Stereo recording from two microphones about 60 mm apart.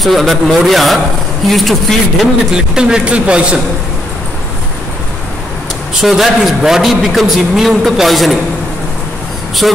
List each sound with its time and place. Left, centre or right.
0.0 s a man's voice: centre
2.5 s speech: centre
6.0 s a man's voice: centre
9.6 s a man's voice: centre